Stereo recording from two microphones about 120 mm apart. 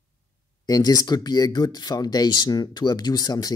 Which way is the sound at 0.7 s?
30° left (ahead or behind).